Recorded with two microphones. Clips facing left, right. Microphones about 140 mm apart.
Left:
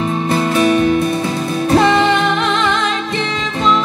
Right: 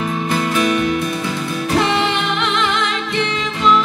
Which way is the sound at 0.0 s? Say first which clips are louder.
Left 3 dB; 30° left (ahead or behind).